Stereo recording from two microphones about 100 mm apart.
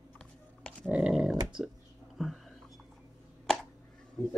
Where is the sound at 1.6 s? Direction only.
5° right (ahead or behind).